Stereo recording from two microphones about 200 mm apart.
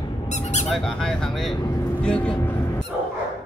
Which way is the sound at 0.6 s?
5° left (ahead or behind).